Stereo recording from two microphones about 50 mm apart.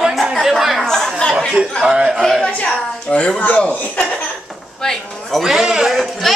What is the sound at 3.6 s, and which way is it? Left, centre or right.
Speech, left.